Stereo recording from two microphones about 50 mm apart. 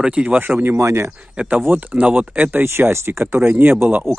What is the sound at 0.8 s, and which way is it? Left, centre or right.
Speech, right.